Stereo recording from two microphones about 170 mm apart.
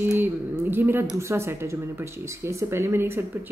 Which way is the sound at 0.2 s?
15° right (ahead or behind).